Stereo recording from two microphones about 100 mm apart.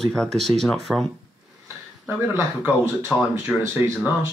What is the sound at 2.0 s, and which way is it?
Speech, 20° right (ahead or behind).